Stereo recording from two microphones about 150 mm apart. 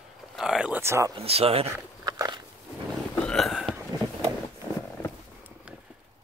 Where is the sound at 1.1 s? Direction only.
40° right (ahead or behind).